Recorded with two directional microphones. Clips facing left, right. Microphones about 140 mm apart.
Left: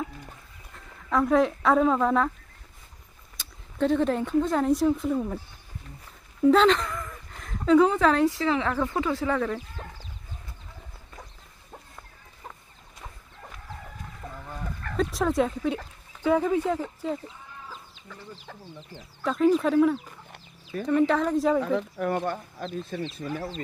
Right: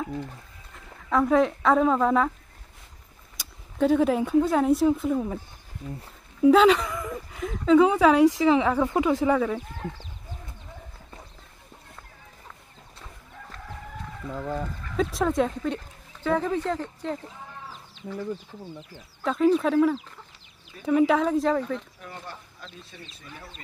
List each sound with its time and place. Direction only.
0.7 s speech: centre (ahead or behind)
3.3 s speech: 5° right (ahead or behind)
6.4 s speech: 5° right (ahead or behind)
14.3 s fowl: 90° right
15.0 s speech: centre (ahead or behind)
18.5 s speech: 75° left (ahead or behind)
19.2 s speech: centre (ahead or behind)
21.5 s speech: 80° left; by 23.5 s 55° left (ahead or behind)